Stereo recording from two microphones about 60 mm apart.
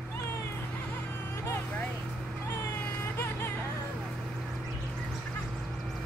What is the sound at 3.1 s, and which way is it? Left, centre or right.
Music, left.